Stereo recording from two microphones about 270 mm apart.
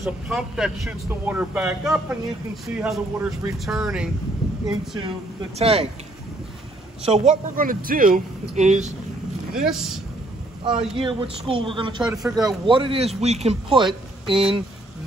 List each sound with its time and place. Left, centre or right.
0.0 s speech: centre
4.4 s a sound: centre
5.6 s speech: right
7.0 s speech: right
9.5 s speech: centre
10.6 s speech: centre
12.0 s speech: centre
12.4 s speech: centre